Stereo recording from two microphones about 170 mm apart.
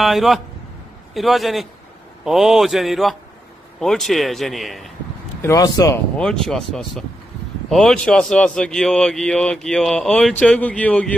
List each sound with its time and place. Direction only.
0.0 s a man's voice: centre (ahead or behind)
5.4 s a man's voice: 20° left (ahead or behind)
6.1 s a man's voice: 5° left (ahead or behind)